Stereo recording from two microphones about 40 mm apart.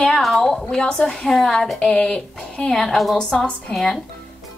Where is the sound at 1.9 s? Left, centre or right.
Left.